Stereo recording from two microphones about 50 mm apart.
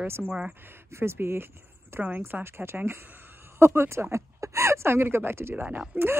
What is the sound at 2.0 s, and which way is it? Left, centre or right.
Speech, right.